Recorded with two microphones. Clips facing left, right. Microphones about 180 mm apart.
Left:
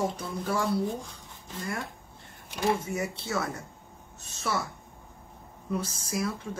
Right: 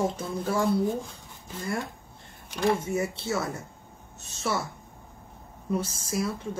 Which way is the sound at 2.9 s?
25° right (ahead or behind).